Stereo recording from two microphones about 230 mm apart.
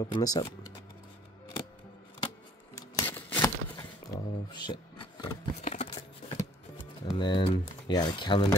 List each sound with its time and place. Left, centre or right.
0.0 s speech: centre
2.2 s a sound: centre; by 6.3 s left
7.1 s speech: centre